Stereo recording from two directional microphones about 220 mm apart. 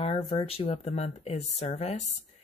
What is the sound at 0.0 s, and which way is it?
Speech, 25° left (ahead or behind).